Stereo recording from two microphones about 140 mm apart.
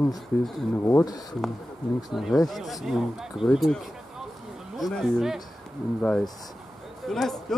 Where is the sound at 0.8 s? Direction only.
20° left (ahead or behind).